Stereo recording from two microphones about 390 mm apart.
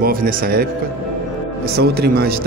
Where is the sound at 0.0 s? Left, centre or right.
Right.